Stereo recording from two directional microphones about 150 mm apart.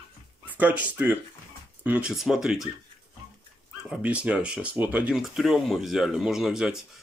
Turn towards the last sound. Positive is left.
turn(degrees=-5)  # may be behind; listen again after turning